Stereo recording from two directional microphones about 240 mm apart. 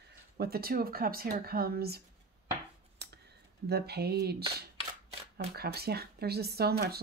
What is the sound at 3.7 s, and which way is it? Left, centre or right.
A woman's voice, right.